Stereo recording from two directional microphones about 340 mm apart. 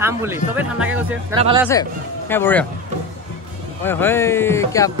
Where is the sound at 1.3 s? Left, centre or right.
Centre.